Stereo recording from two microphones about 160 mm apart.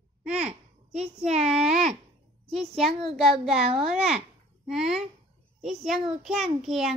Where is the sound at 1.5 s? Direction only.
5° right (ahead or behind).